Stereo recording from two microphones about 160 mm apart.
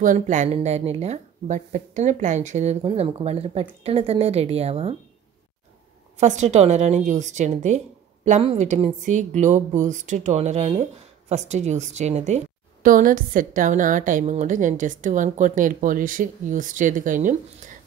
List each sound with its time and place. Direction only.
0.0 s speech: 55° right (ahead or behind)
6.1 s speech: 45° right (ahead or behind)